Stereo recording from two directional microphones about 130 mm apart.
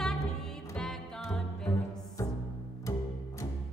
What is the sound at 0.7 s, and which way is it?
Music, 5° left (ahead or behind).